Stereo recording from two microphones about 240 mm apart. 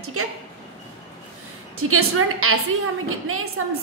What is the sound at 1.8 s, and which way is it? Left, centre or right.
A woman's voice, right.